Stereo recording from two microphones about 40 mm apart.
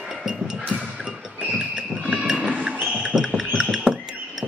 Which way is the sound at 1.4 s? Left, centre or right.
Right.